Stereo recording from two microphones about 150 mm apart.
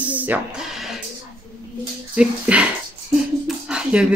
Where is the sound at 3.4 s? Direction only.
5° right (ahead or behind).